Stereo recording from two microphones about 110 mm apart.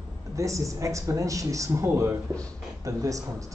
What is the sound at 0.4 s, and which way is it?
Speech, 30° right (ahead or behind).